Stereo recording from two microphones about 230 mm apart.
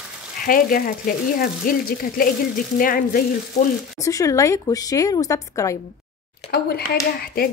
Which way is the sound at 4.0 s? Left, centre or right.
Centre.